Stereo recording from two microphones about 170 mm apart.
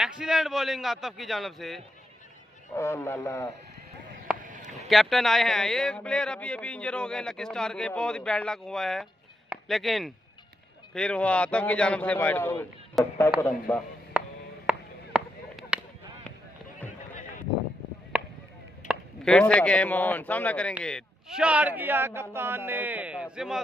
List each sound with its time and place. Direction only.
0.0 s a man's voice: centre (ahead or behind)
2.7 s a man's voice: 15° left (ahead or behind)
4.4 s a sound: 50° right (ahead or behind)
4.8 s a man's voice: centre (ahead or behind)
13.0 s a man's voice: centre (ahead or behind)
13.4 s a man's voice: 15° left (ahead or behind)
14.2 s a sound: 5° right (ahead or behind)
18.1 s a sound: 10° right (ahead or behind)
19.2 s a man's voice: 5° left (ahead or behind)